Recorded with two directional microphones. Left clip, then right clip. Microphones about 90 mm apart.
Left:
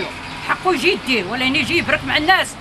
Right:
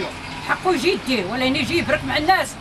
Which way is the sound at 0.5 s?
20° left (ahead or behind).